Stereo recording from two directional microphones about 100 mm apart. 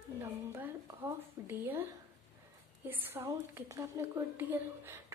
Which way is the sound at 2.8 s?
20° right (ahead or behind).